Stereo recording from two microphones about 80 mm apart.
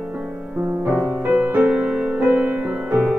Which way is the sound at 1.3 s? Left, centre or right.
Right.